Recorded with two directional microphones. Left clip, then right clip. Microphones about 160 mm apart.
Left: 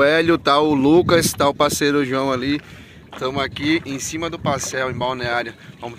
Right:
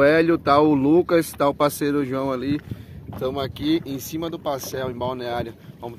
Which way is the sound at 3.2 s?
10° left (ahead or behind).